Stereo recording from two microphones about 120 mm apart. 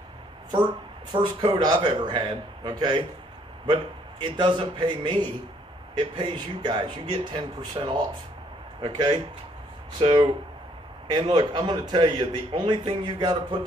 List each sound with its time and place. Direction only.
1.1 s a man's voice: 35° right (ahead or behind)